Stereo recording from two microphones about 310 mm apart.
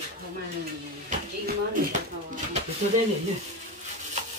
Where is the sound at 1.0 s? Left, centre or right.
Right.